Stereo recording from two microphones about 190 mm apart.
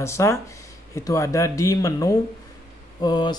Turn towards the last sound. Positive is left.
turn(degrees=20)  # may be behind; listen again after turning